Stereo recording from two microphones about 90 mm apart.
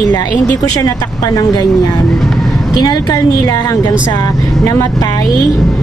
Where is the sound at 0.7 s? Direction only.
45° left (ahead or behind).